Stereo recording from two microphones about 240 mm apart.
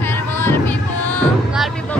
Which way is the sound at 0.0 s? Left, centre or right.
Centre.